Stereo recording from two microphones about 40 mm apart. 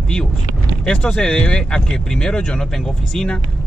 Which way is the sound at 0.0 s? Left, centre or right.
Left.